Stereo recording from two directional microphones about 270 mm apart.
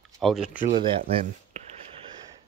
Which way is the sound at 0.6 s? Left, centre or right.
Centre.